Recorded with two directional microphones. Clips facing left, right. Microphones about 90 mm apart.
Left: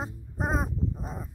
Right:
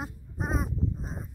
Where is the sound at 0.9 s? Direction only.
55° left (ahead or behind).